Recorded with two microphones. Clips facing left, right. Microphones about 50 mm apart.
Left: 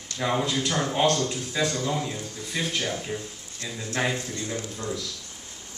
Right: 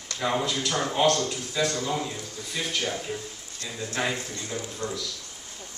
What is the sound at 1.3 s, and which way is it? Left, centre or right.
Speech, centre.